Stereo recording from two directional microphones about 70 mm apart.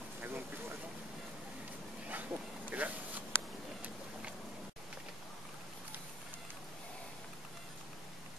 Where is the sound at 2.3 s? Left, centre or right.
Right.